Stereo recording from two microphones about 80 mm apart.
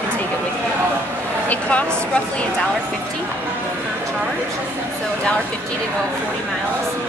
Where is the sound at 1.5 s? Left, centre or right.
Centre.